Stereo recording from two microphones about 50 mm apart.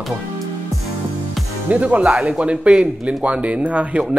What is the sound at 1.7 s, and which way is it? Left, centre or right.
Speech, right.